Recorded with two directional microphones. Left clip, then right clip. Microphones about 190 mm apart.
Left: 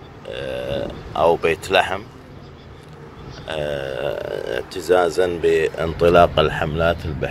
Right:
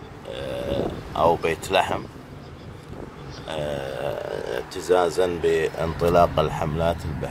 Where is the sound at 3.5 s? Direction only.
5° right (ahead or behind).